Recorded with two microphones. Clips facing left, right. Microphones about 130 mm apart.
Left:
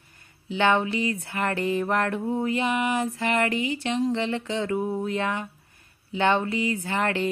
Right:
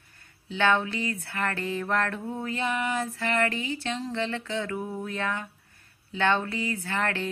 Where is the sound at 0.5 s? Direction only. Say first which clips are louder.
Left 2 dB; 15° left (ahead or behind).